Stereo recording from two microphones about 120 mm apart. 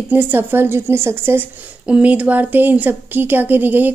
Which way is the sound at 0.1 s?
15° right (ahead or behind).